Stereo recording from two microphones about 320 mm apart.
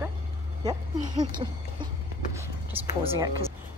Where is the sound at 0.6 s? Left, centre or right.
Centre.